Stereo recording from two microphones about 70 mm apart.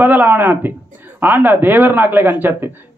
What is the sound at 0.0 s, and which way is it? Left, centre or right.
A man's voice, right.